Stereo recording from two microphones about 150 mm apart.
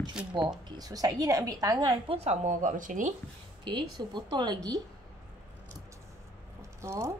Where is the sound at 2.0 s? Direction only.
45° right (ahead or behind); by 3.1 s 60° right (ahead or behind).